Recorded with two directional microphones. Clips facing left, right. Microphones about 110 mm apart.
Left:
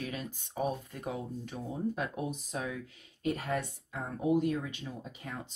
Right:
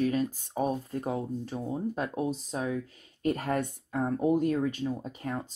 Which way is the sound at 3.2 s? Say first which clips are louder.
Right 4 dB; 50° right (ahead or behind).